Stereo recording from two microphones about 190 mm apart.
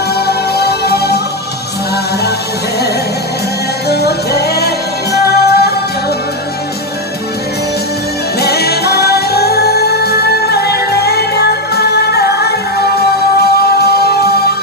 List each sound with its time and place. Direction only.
0.1 s music: 55° left (ahead or behind)
3.9 s music: 55° left (ahead or behind)
8.4 s music: 55° left (ahead or behind)